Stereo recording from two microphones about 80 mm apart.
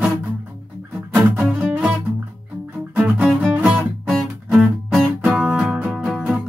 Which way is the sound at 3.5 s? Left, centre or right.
Centre.